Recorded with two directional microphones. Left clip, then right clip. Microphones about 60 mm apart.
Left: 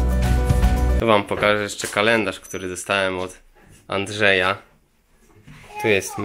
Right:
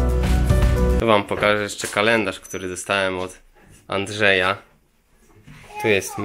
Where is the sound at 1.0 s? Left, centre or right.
Centre.